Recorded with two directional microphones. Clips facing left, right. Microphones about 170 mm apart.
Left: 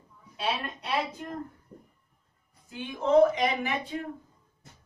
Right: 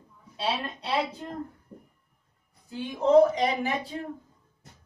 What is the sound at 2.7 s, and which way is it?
Speech, 35° right (ahead or behind).